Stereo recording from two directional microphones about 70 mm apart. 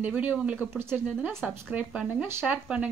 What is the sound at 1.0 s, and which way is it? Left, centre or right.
Speech, centre.